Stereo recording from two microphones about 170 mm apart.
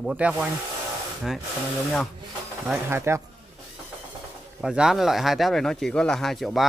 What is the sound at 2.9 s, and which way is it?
Speech, 15° right (ahead or behind).